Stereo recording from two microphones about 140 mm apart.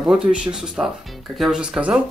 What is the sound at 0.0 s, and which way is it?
Speech, 5° right (ahead or behind).